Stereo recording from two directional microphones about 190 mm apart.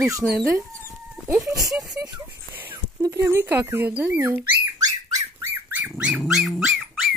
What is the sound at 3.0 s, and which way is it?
Dog, 15° right (ahead or behind).